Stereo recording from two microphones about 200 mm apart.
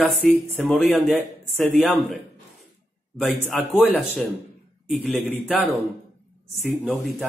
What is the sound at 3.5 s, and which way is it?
Speech, centre (ahead or behind).